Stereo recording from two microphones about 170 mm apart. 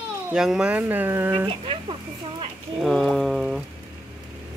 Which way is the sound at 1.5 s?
30° right (ahead or behind).